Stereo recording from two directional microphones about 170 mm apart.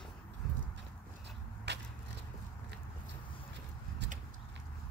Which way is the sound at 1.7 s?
90° right.